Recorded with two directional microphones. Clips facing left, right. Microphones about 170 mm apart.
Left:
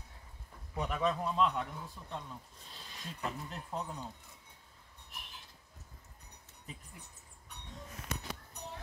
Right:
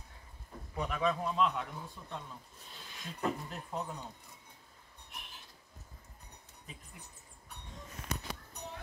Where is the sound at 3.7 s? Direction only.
Centre (ahead or behind).